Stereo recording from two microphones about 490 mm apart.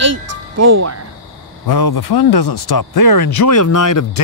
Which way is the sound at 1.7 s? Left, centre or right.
Left.